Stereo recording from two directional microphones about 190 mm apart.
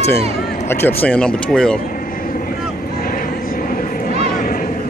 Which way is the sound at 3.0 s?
50° left (ahead or behind).